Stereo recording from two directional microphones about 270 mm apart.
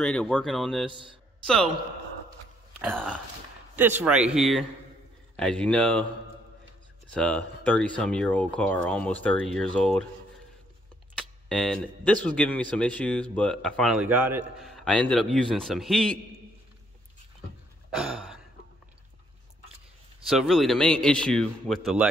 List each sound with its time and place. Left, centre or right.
0.0 s speech: centre
0.8 s a man's voice: centre
1.4 s a man's voice: centre
2.8 s speech: centre
7.1 s speech: centre
11.1 s speech: centre
17.9 s a sound: centre
20.2 s speech: centre